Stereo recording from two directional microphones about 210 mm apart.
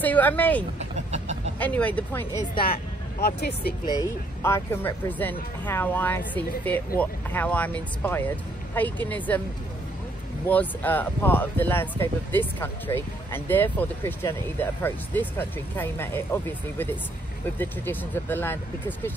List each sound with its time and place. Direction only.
0.0 s speech: 10° left (ahead or behind)
1.1 s chicken: 35° right (ahead or behind)
1.6 s speech: 5° left (ahead or behind)
2.6 s speech: 50° left (ahead or behind)
3.8 s speech: 15° left (ahead or behind)
10.4 s speech: 10° left (ahead or behind)